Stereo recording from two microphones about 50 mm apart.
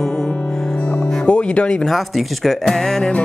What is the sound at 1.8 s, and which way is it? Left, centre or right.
Speech, centre.